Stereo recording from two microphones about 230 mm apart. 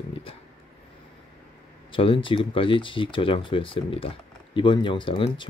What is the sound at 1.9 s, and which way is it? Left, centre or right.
Speech, left.